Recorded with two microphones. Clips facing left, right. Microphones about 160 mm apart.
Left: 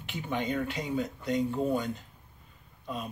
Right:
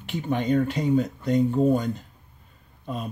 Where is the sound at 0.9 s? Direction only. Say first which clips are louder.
Right 8 dB; 45° right (ahead or behind).